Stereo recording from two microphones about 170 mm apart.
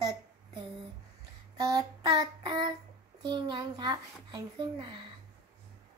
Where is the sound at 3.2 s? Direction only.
25° right (ahead or behind).